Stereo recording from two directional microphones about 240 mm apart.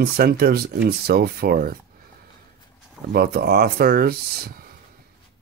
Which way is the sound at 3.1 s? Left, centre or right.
Right.